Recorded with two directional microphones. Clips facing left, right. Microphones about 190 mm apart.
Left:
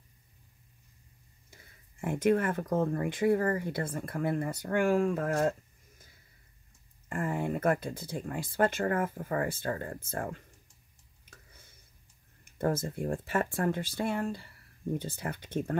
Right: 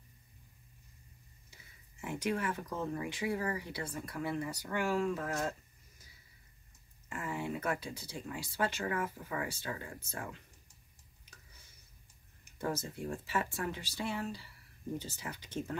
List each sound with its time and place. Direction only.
1.5 s speech: 50° left (ahead or behind)
12.5 s speech: 55° left (ahead or behind)